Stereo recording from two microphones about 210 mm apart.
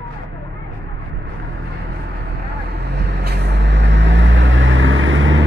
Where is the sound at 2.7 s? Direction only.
50° right (ahead or behind).